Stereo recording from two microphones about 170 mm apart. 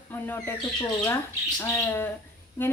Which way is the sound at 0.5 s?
25° left (ahead or behind).